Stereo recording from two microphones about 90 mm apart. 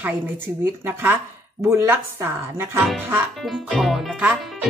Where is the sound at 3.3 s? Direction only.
Centre (ahead or behind).